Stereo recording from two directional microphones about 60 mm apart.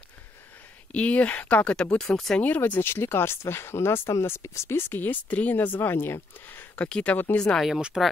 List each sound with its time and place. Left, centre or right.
0.9 s speech: left
2.4 s speech: left
6.7 s speech: left
7.6 s speech: centre